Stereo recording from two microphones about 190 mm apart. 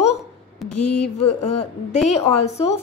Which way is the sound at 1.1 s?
35° left (ahead or behind).